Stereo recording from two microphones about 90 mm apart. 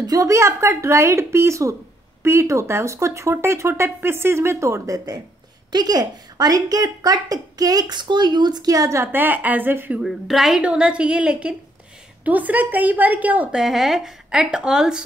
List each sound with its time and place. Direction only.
0.0 s a woman's voice: 40° right (ahead or behind)
9.1 s a woman's voice: 20° right (ahead or behind)
10.0 s a woman's voice: 5° right (ahead or behind)
13.6 s speech: 5° right (ahead or behind)